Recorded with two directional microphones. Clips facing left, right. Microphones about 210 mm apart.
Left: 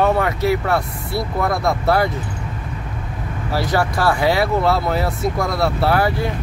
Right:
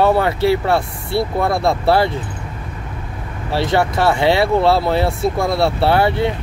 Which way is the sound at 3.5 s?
25° right (ahead or behind).